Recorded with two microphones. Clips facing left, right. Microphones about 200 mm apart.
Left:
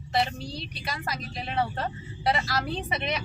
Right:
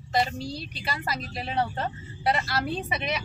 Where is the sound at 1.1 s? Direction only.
Centre (ahead or behind).